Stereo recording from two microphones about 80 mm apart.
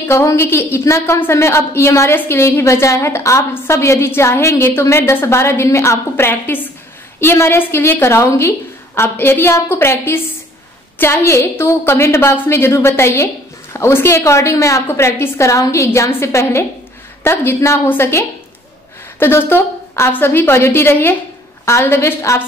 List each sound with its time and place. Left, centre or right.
0.0 s a woman's voice: left